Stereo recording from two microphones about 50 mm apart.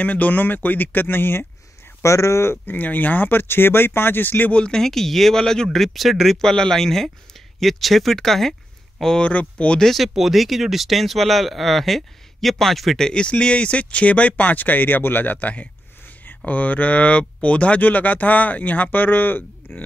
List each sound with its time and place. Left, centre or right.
0.0 s speech: left
2.0 s speech: left
2.5 s speech: left
4.6 s speech: centre
4.8 s speech: centre
5.7 s speech: centre
6.4 s speech: centre
9.2 s speech: left
9.9 s speech: centre; by 19.4 s left